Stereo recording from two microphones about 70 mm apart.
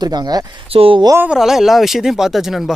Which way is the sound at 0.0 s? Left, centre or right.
Right.